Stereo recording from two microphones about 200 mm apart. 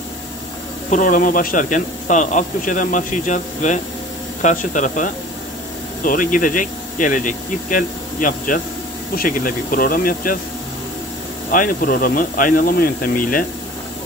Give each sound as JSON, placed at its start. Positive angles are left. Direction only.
{"t": 0.8, "sound": "speech", "side_deg": 40}
{"t": 11.5, "sound": "speech", "side_deg": 45}